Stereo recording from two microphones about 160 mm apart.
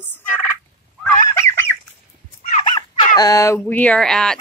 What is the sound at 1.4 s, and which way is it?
Fowl, 15° left (ahead or behind).